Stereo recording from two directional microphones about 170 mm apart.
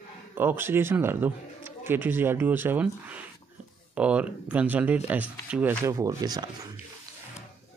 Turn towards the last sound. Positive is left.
turn(degrees=-25)  # may be behind; listen again after turning